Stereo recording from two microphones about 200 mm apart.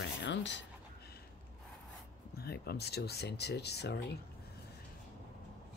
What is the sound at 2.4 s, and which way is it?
Speech, 55° left (ahead or behind).